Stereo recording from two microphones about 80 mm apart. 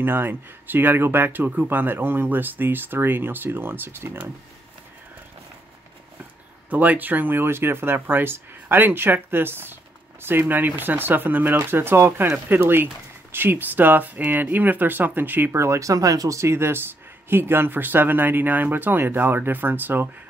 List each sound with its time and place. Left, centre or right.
0.0 s speech: right
6.7 s speech: right
15.6 s speech: right